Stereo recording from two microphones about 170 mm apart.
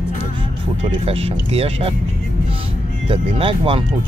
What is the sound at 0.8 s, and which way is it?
Speech, 35° right (ahead or behind).